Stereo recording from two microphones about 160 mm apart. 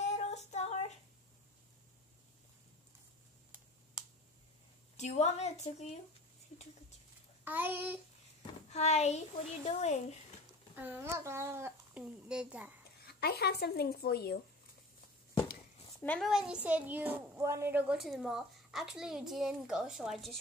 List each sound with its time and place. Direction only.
0.0 s child singing: 45° left (ahead or behind)
4.9 s a woman's voice: 45° left (ahead or behind)
7.4 s child singing: 10° right (ahead or behind)
8.4 s a woman's voice: 45° left (ahead or behind)
10.8 s a child's voice: 10° right (ahead or behind)
12.0 s a child's voice: 5° right (ahead or behind)
13.0 s speech: 75° left (ahead or behind)
16.0 s a woman's voice: 10° left (ahead or behind)
16.3 s a child's voice: 5° right (ahead or behind)